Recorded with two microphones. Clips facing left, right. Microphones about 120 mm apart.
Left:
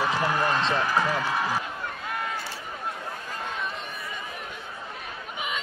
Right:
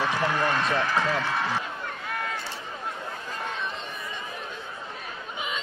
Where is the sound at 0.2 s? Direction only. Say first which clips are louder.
Even; 15° left (ahead or behind).